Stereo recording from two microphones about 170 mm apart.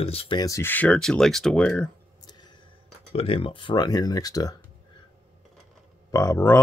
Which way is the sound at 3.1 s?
35° left (ahead or behind).